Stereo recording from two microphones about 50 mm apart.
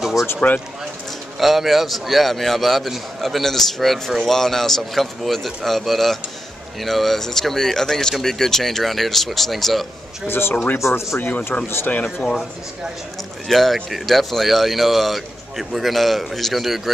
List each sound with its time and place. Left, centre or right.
0.0 s a sound: centre
1.4 s a man's voice: centre
10.2 s a man's voice: left
10.8 s speech: left
11.1 s speech: left
13.5 s a man's voice: centre